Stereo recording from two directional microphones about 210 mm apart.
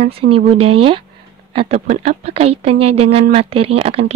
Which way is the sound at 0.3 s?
25° right (ahead or behind).